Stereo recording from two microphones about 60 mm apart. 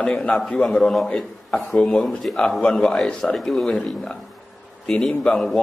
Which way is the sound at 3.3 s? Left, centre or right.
Centre.